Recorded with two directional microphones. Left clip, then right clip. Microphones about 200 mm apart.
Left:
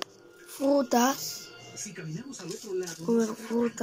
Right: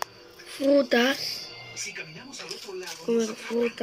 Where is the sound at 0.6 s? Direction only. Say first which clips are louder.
Right 3 dB; 10° left (ahead or behind).